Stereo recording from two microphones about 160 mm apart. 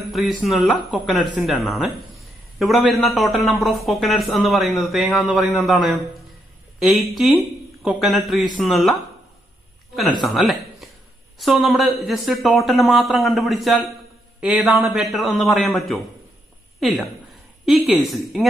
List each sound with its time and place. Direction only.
0.1 s a man's voice: centre (ahead or behind)
10.2 s a man's voice: centre (ahead or behind)